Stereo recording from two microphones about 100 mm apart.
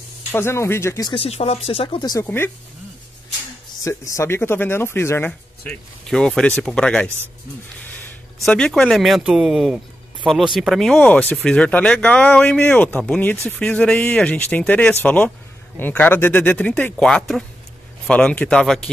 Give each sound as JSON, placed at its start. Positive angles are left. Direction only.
{"t": 0.3, "sound": "speech", "side_deg": 25}
{"t": 1.1, "sound": "speech", "side_deg": 75}
{"t": 2.0, "sound": "speech", "side_deg": 40}
{"t": 2.2, "sound": "speech", "side_deg": 20}
{"t": 3.8, "sound": "speech", "side_deg": 30}
{"t": 5.7, "sound": "speech", "side_deg": 5}
{"t": 8.5, "sound": "speech", "side_deg": 10}
{"t": 11.1, "sound": "speech", "side_deg": 15}
{"t": 17.0, "sound": "speech", "side_deg": 5}